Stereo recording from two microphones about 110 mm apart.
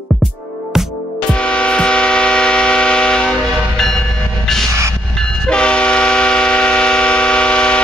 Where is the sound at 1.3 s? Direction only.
10° left (ahead or behind).